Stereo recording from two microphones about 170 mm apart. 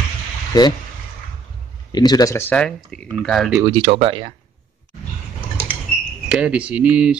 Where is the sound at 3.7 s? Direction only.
35° right (ahead or behind).